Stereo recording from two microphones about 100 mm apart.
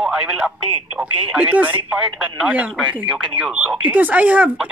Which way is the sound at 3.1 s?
10° right (ahead or behind).